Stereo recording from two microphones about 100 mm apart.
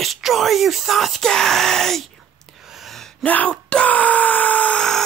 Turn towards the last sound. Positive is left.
turn(degrees=10)  # may be behind; listen again after turning